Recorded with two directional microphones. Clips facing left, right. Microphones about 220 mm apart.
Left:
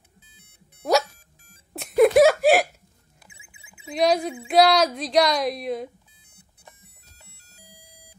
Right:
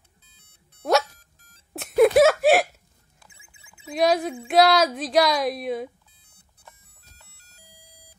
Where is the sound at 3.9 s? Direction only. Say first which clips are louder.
Even; centre (ahead or behind).